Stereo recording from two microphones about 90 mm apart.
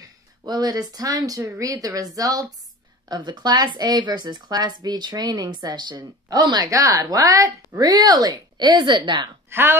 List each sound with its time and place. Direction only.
0.5 s speech: 50° right (ahead or behind)
3.1 s speech: 50° right (ahead or behind)
9.5 s speech: 25° right (ahead or behind)